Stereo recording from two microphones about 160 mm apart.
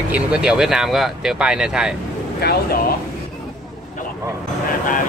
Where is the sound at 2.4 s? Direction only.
75° left (ahead or behind).